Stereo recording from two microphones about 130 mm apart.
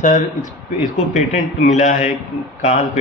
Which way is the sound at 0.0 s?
75° left (ahead or behind).